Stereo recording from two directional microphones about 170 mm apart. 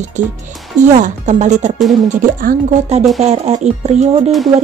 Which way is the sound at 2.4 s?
55° right (ahead or behind).